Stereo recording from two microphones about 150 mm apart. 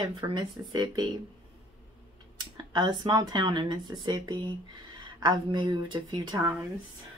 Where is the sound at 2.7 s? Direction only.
30° right (ahead or behind).